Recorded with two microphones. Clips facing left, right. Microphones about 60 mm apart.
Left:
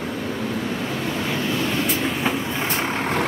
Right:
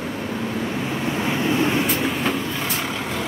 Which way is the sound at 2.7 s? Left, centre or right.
Left.